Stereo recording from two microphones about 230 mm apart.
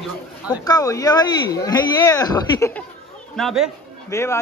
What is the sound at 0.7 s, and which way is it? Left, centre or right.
Speech, centre.